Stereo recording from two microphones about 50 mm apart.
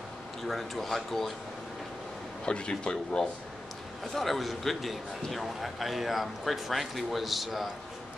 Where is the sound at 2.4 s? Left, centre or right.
Centre.